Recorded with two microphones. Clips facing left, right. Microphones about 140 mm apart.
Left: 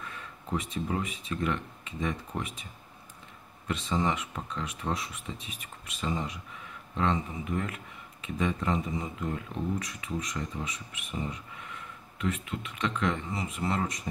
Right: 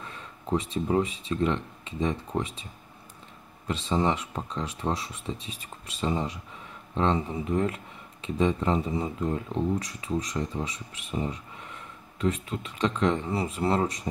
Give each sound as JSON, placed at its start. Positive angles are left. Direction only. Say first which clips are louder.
{"t": 0.0, "sound": "speech", "louder": "right 2 dB", "side_deg": -30}
{"t": 3.6, "sound": "speech", "louder": "right 3 dB", "side_deg": -30}